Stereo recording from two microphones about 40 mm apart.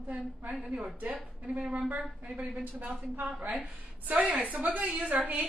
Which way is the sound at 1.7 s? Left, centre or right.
Right.